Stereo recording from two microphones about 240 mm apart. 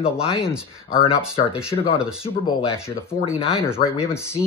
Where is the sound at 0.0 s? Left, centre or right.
Left.